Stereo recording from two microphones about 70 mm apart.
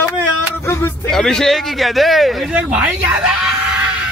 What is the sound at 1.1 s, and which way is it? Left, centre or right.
Speech, centre.